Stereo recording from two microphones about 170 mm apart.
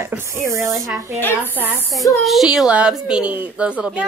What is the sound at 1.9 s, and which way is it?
A woman's voice, centre (ahead or behind).